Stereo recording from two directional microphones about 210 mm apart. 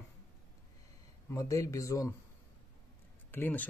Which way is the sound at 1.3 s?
15° left (ahead or behind).